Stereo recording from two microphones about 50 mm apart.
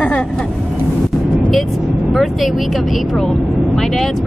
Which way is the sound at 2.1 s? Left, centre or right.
Centre.